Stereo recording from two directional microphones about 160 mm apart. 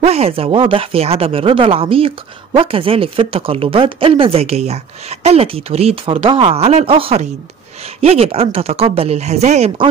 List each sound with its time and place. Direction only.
0.0 s speech: 40° right (ahead or behind)